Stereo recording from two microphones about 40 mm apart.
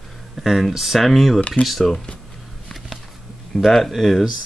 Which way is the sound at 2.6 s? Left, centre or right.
Centre.